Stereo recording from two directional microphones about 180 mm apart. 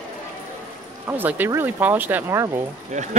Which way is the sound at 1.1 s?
10° right (ahead or behind).